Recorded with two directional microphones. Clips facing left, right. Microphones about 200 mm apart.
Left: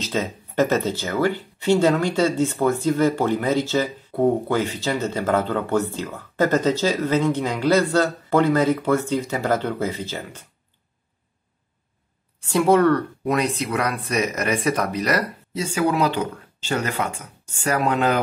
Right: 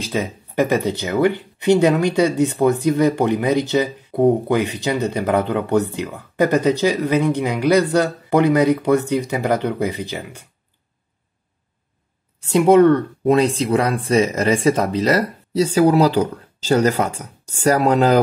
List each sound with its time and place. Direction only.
0.0 s speech: 10° right (ahead or behind)
12.4 s speech: 20° right (ahead or behind); by 18.2 s 35° right (ahead or behind)